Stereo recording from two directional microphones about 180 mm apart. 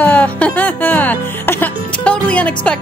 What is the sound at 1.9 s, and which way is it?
Music, 5° left (ahead or behind).